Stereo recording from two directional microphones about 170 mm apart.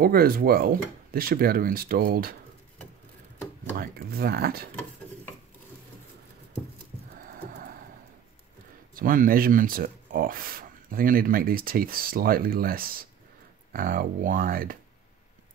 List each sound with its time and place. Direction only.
0.0 s speech: 60° right (ahead or behind)
3.7 s speech: 65° right (ahead or behind)
7.2 s music: 60° right (ahead or behind)
8.9 s speech: 55° right (ahead or behind)